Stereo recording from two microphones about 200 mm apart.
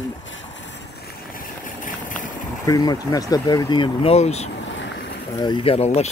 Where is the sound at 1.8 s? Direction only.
40° left (ahead or behind).